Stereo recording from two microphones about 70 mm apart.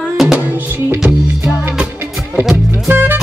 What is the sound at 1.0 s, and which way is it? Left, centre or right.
Music, centre.